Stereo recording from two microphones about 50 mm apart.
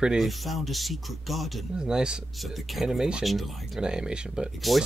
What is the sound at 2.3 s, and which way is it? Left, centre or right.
Speech, centre.